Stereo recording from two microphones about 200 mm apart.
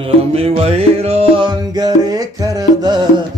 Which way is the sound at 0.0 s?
30° right (ahead or behind).